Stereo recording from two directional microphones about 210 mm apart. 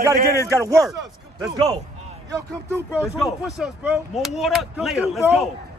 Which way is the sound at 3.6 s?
Centre (ahead or behind).